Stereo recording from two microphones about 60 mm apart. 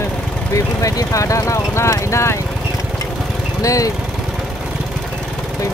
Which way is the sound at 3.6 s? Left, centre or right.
Left.